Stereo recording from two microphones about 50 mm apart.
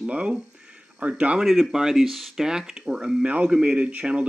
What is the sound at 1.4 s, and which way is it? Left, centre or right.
Speech, centre.